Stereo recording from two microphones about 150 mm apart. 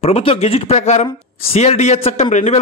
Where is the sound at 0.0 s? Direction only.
40° left (ahead or behind).